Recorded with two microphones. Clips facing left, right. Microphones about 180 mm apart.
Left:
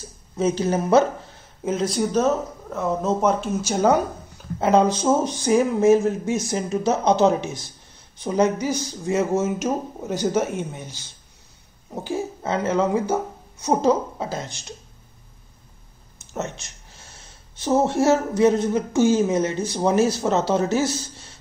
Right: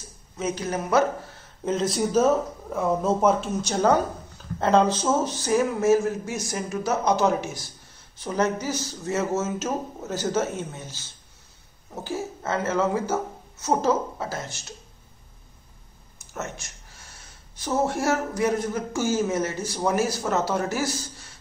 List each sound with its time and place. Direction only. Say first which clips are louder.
0.4 s speech: left 6 dB; 30° left (ahead or behind)
1.6 s speech: left 2 dB; 5° left (ahead or behind)
16.3 s speech: left 4 dB; 20° left (ahead or behind)